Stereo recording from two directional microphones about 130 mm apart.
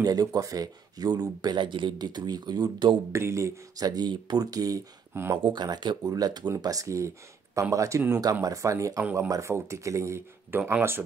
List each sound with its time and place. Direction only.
0.0 s speech: 30° right (ahead or behind)
3.1 s speech: 20° right (ahead or behind)
5.4 s speech: 35° right (ahead or behind); by 11.0 s 15° right (ahead or behind)